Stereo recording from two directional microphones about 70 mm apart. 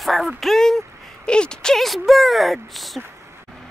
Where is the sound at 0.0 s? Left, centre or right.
Centre.